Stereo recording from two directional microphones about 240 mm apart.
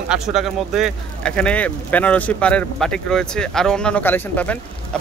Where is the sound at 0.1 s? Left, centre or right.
Centre.